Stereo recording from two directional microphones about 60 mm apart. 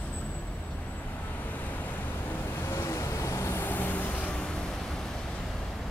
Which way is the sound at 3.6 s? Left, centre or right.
Left.